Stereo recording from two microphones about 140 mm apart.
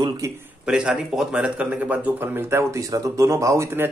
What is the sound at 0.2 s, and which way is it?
Speech, 20° right (ahead or behind).